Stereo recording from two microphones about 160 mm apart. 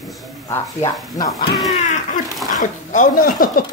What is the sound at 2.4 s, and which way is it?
Speech, 55° left (ahead or behind).